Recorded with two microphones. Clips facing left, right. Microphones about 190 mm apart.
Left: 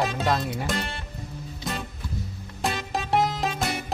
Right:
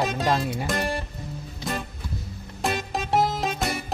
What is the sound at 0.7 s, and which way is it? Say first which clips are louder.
Music: right 5 dB; 40° right (ahead or behind).